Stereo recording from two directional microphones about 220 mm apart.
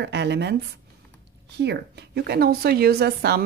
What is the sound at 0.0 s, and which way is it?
A woman's voice, 50° right (ahead or behind).